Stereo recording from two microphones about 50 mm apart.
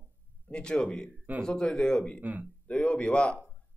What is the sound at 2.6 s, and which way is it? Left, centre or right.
Speech, left.